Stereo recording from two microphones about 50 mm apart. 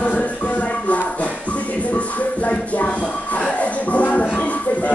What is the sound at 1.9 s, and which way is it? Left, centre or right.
Music, left.